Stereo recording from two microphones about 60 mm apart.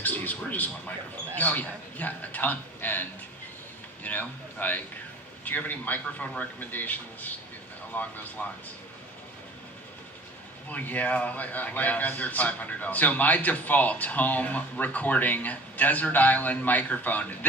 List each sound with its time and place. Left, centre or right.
0.0 s a man's voice: left
10.7 s a man's voice: left